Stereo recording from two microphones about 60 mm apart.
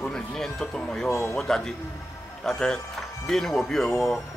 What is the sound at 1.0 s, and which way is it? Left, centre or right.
Speech, left.